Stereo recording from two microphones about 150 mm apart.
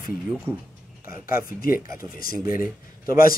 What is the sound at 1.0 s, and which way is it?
Speech, 70° left (ahead or behind).